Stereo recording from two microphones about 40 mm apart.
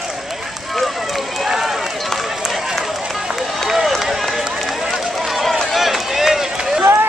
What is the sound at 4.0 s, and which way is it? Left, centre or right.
Run, centre.